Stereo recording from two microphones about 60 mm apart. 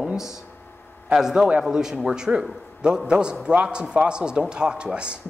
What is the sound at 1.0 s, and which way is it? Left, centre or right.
A man's voice, centre.